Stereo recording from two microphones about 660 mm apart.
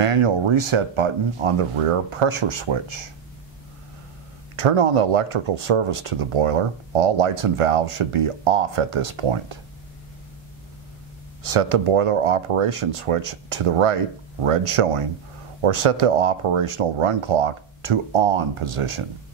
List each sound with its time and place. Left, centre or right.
0.0 s speech: right
4.6 s speech: right
11.4 s speech: right